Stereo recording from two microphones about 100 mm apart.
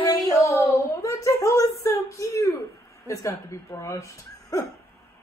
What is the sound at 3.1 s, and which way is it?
Speech, 30° left (ahead or behind).